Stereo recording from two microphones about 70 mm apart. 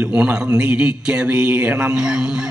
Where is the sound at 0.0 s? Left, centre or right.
Centre.